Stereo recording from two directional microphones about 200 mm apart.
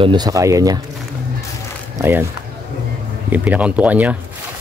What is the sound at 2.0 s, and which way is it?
Speech, 10° right (ahead or behind).